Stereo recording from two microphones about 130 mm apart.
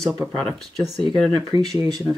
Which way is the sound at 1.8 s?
30° right (ahead or behind).